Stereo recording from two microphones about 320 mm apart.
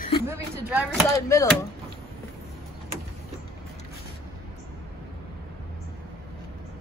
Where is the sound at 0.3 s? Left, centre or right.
Centre.